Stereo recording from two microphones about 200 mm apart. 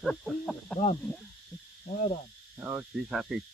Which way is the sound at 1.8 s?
35° left (ahead or behind).